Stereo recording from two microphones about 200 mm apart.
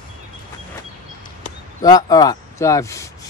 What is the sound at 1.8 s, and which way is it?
Speech, 20° left (ahead or behind).